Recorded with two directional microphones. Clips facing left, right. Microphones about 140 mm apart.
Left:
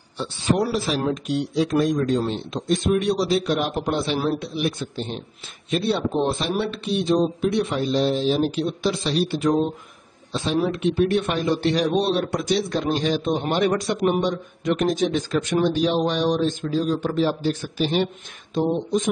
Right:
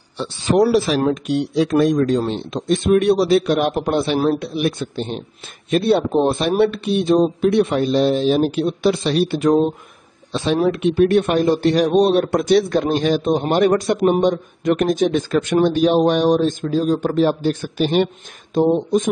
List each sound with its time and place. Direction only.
0.2 s speech: 75° right (ahead or behind)
5.7 s speech: 50° right (ahead or behind)
10.3 s speech: 70° right (ahead or behind); by 19.0 s 50° right (ahead or behind)